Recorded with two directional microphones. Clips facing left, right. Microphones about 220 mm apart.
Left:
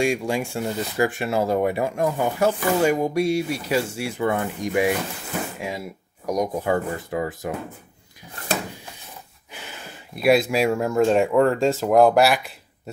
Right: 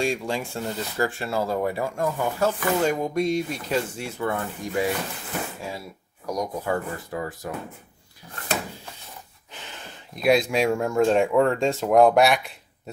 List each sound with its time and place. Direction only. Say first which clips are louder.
0.0 s speech: left 4 dB; 15° left (ahead or behind)
9.5 s speech: left 2 dB; 10° left (ahead or behind)